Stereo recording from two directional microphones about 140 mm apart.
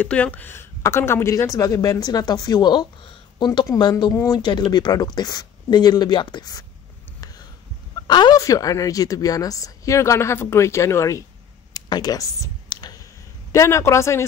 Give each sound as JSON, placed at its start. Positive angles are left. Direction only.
{"t": 0.0, "sound": "a woman's voice", "side_deg": 10}
{"t": 4.4, "sound": "speech", "side_deg": 35}
{"t": 8.1, "sound": "a woman's voice", "side_deg": 30}
{"t": 11.7, "sound": "a sound", "side_deg": 25}
{"t": 13.5, "sound": "a woman's voice", "side_deg": 20}